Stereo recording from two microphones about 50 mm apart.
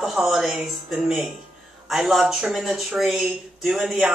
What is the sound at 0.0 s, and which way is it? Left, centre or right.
A woman's voice, centre.